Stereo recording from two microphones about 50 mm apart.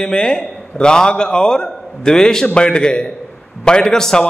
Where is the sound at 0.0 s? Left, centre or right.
Centre.